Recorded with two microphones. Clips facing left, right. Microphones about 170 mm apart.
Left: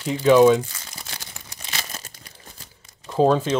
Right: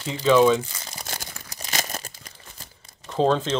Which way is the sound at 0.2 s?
15° left (ahead or behind).